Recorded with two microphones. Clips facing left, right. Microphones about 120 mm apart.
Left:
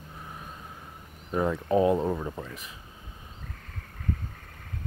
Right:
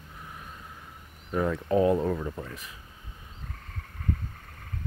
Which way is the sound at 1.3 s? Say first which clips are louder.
Left 1 dB; 20° left (ahead or behind).